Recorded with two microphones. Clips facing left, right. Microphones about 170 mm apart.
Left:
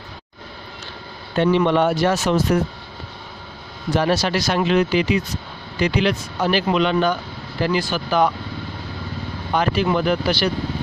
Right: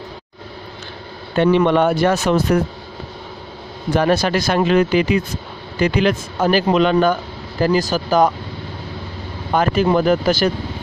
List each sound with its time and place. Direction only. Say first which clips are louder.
1.4 s speech: right 3 dB; 55° right (ahead or behind)
3.9 s speech: right 3 dB; 55° right (ahead or behind)
9.5 s speech: right 4 dB; 45° right (ahead or behind)